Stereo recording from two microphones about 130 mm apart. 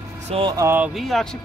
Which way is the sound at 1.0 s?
Centre (ahead or behind).